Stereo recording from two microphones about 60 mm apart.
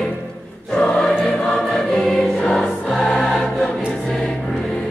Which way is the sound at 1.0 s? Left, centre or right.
Centre.